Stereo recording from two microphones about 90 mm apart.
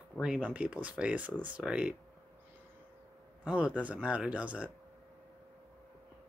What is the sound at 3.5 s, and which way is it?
Speech, 15° right (ahead or behind).